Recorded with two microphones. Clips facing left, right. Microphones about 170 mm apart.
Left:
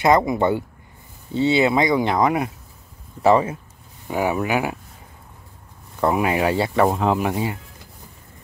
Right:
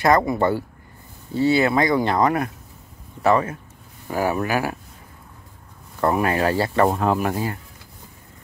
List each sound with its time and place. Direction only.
0.0 s speech: 20° left (ahead or behind)
3.2 s speech: 25° left (ahead or behind)
4.1 s speech: 15° left (ahead or behind)
5.9 s speech: 10° left (ahead or behind)